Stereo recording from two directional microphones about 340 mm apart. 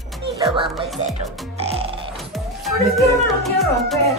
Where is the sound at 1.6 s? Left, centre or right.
Centre.